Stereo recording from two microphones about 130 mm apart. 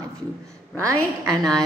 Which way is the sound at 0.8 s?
25° right (ahead or behind).